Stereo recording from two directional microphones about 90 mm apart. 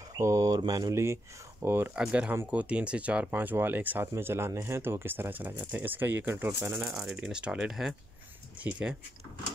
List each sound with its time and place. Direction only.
0.2 s speech: 40° right (ahead or behind)
0.7 s speech: 50° right (ahead or behind)
0.9 s speech: 30° right (ahead or behind)
2.0 s speech: 15° right (ahead or behind)
6.8 s speech: 5° right (ahead or behind)